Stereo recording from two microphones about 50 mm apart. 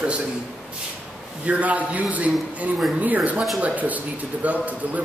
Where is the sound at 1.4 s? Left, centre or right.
Right.